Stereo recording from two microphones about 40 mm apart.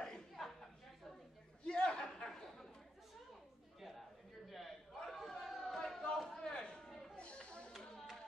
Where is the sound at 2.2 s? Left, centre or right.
Centre.